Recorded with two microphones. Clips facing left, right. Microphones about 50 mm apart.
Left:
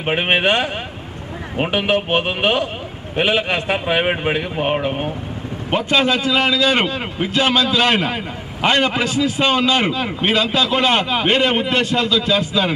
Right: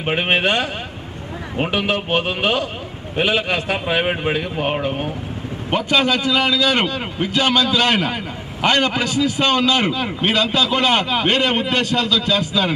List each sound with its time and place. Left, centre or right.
0.0 s a man's voice: centre
1.7 s a man's voice: left
5.7 s a man's voice: centre